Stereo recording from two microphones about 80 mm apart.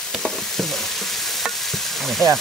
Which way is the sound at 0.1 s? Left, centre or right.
Centre.